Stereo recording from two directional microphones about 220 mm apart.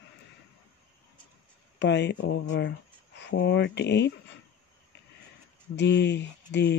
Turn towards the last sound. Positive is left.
turn(degrees=55)  # may be behind; listen again after turning